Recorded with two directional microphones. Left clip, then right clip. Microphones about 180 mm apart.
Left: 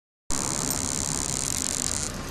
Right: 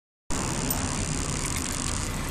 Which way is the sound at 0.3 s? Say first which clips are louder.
Left 1 dB; 25° right (ahead or behind).